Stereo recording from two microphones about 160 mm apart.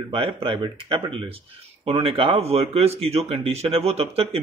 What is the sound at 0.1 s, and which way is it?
Speech, 35° right (ahead or behind).